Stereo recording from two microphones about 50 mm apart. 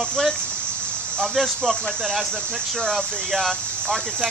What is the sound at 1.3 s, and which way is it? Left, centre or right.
Speech, centre.